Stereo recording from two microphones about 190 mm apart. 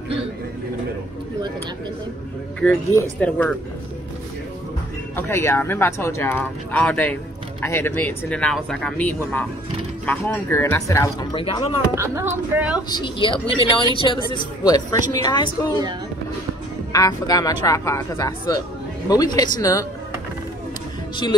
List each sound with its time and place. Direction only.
2.6 s speech: 10° left (ahead or behind)
5.1 s speech: 15° left (ahead or behind)
11.3 s speech: 25° left (ahead or behind)
11.9 s speech: 15° right (ahead or behind)
12.9 s speech: 25° left (ahead or behind)
16.9 s speech: 20° left (ahead or behind)